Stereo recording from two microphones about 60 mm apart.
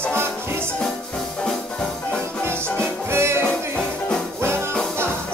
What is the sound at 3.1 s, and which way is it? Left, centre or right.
Music, right.